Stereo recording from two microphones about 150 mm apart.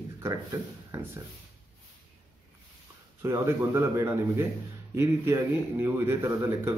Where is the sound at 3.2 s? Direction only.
20° right (ahead or behind).